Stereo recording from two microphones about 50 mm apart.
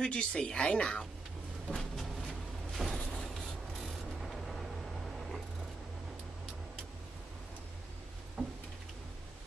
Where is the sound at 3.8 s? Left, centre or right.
Centre.